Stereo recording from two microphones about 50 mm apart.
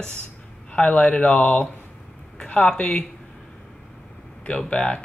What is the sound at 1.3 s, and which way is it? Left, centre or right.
Speech, left.